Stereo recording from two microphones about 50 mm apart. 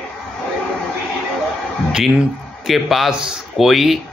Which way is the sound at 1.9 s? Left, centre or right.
Centre.